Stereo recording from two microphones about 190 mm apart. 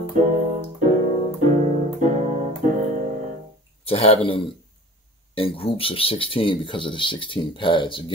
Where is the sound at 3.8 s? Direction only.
30° left (ahead or behind).